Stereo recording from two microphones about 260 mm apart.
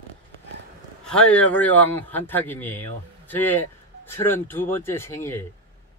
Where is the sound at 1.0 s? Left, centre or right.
Centre.